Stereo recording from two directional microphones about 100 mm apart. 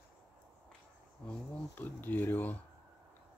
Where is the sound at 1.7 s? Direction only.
20° left (ahead or behind).